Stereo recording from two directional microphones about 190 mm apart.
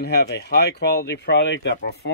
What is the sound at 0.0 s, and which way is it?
Speech, 60° left (ahead or behind).